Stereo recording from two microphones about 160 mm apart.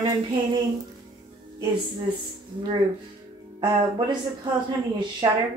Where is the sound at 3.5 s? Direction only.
30° right (ahead or behind).